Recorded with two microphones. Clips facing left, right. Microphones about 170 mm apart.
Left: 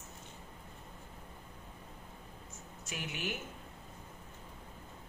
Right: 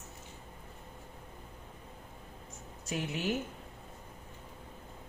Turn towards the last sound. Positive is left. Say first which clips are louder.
# right 7 dB
turn(degrees=-35)  # may be behind; listen again after turning